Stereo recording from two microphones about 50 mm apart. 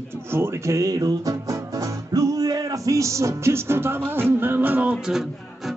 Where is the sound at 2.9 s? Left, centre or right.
Right.